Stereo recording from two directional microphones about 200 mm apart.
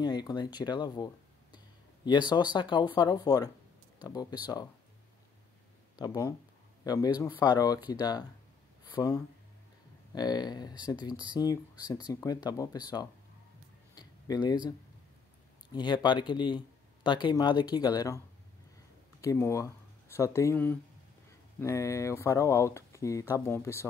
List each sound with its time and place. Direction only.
0.0 s speech: 20° left (ahead or behind)
5.9 s speech: 20° left (ahead or behind)
13.9 s a sound: 20° left (ahead or behind)
15.7 s speech: 20° left (ahead or behind)
19.2 s speech: 15° left (ahead or behind)